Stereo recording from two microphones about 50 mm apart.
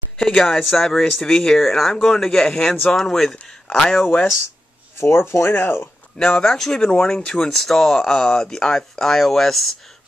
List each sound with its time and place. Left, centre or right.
0.2 s speech: centre
5.0 s speech: left
6.1 s speech: centre